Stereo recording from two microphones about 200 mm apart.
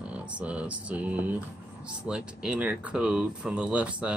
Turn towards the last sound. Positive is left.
turn(degrees=-5)  # may be behind; listen again after turning